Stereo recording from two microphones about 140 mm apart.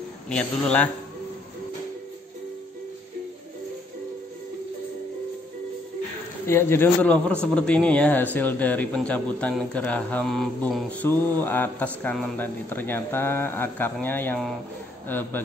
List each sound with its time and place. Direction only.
0.3 s speech: 5° left (ahead or behind)
6.4 s speech: 20° left (ahead or behind)